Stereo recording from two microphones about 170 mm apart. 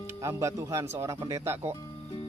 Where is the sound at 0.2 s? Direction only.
15° right (ahead or behind).